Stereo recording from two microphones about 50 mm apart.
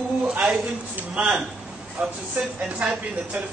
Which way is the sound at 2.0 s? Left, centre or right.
Right.